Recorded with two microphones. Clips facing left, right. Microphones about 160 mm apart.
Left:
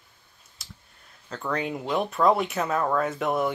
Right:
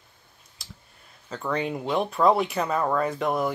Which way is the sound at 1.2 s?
Centre (ahead or behind).